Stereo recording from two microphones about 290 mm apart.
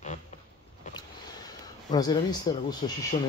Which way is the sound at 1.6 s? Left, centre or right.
Centre.